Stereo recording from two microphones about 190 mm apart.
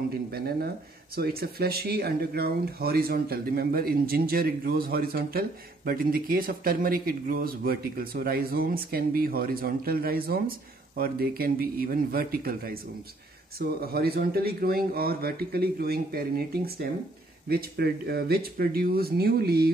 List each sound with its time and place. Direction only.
0.3 s speech: 55° right (ahead or behind)